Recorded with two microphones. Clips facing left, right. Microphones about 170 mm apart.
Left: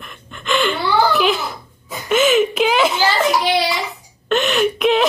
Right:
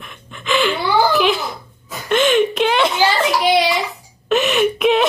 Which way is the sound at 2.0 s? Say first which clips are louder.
Even; 5° left (ahead or behind).